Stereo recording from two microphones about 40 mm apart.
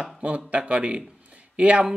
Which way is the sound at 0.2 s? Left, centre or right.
Right.